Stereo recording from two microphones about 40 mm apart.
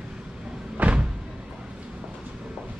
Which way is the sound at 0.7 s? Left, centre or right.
Right.